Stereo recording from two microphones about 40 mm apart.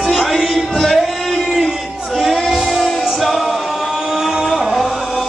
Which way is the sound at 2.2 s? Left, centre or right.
Centre.